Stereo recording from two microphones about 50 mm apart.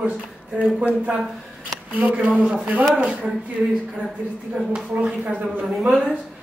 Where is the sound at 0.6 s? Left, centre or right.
Right.